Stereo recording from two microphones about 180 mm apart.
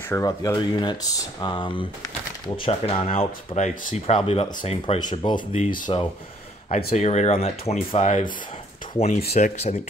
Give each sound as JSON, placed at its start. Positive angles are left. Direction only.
{"t": 0.1, "sound": "speech", "side_deg": 20}